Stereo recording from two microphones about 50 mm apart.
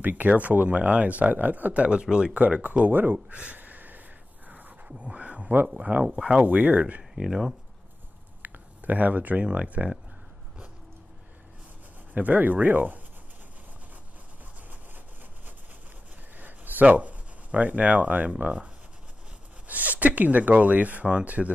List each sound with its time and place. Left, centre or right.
0.0 s speech: right; by 2.4 s centre
2.4 s speech: right
3.3 s a sound: right
4.8 s a sound: right
5.8 s speech: right
6.0 s speech: centre
6.4 s speech: right
7.0 s speech: centre
8.4 s speech: right
12.1 s speech: right
16.3 s a sound: right
16.9 s speech: right
19.7 s speech: right